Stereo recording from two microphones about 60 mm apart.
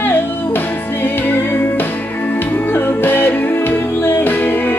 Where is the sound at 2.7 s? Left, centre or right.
Left.